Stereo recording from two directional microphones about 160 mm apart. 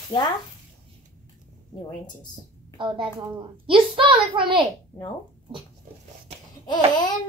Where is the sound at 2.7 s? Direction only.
30° right (ahead or behind).